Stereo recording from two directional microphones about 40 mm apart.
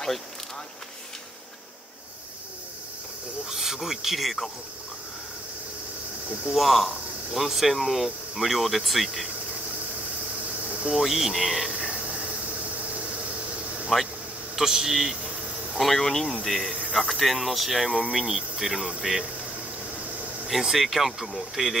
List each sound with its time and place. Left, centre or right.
3.4 s speech: centre
6.5 s speech: centre
10.9 s speech: centre
13.9 s speech: centre
15.8 s speech: centre
20.6 s speech: centre